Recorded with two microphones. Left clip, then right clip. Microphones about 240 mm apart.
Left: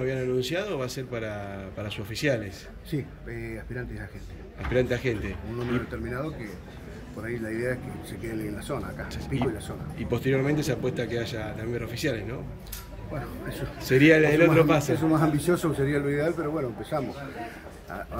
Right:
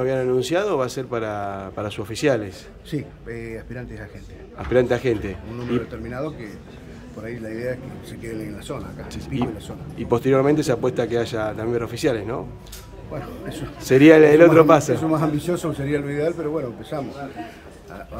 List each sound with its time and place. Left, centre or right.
0.0 s speech: centre
4.7 s speech: centre
7.2 s a man's voice: centre
9.1 s speech: centre
13.7 s speech: centre
15.0 s a man's voice: centre